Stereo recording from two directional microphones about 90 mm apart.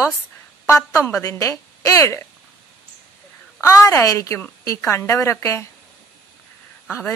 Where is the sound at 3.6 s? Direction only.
40° left (ahead or behind).